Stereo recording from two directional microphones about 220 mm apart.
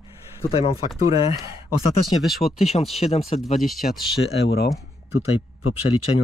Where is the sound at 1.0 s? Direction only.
15° right (ahead or behind).